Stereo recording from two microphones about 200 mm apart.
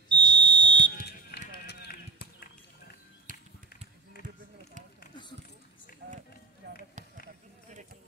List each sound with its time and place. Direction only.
0.1 s fire alarm: 20° right (ahead or behind)
1.0 s music: 55° left (ahead or behind)